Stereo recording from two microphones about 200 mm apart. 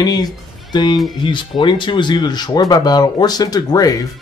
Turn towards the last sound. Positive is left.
turn(degrees=20)  # may be behind; listen again after turning